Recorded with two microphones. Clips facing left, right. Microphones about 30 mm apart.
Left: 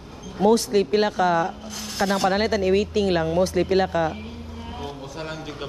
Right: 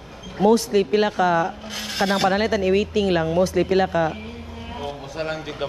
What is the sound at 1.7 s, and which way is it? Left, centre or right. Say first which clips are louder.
Speech: right 2 dB; right.